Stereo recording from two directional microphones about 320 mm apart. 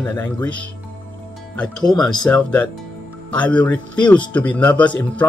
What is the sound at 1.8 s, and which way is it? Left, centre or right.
Speech, centre.